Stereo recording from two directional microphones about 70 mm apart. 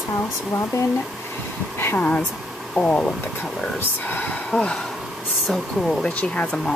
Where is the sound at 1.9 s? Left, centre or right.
Centre.